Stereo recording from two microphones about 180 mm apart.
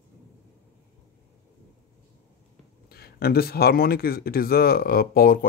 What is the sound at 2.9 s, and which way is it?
Speech, 60° left (ahead or behind).